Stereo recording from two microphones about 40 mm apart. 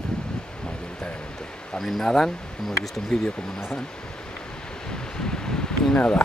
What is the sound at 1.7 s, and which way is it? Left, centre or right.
Speech, centre.